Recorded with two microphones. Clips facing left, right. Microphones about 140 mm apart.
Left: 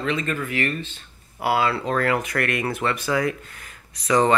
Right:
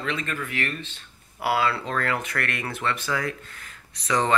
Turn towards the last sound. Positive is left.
turn(degrees=10)  # may be behind; listen again after turning